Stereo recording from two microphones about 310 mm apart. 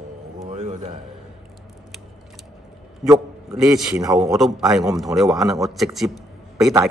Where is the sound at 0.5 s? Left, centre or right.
Right.